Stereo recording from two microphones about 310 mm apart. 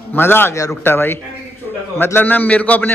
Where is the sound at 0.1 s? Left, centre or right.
Centre.